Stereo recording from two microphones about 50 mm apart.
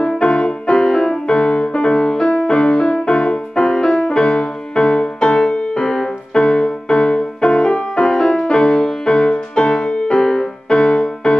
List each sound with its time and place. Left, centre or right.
0.0 s music: centre